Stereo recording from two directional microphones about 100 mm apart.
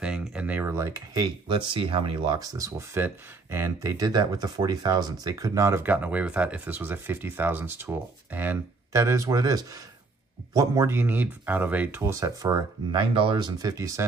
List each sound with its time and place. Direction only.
0.0 s a sound: 10° right (ahead or behind)
0.7 s speech: 30° right (ahead or behind); by 2.3 s 55° right (ahead or behind)
2.3 s speech: 35° right (ahead or behind); by 8.5 s 20° right (ahead or behind)
8.9 s speech: 30° right (ahead or behind)
10.9 s speech: 20° right (ahead or behind)
12.0 s speech: 30° right (ahead or behind)
12.9 s speech: 60° right (ahead or behind); by 14.0 s 35° right (ahead or behind)